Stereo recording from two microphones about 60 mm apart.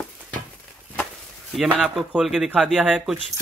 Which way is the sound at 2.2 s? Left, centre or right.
Centre.